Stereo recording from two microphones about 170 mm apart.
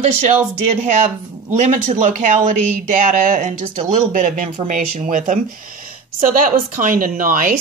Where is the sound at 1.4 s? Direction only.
45° right (ahead or behind).